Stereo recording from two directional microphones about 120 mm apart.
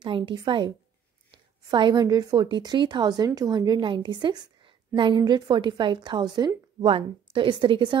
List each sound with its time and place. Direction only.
0.0 s a woman's voice: 45° right (ahead or behind)